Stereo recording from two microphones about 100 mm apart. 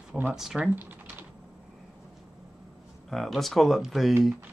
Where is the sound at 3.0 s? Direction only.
Centre (ahead or behind).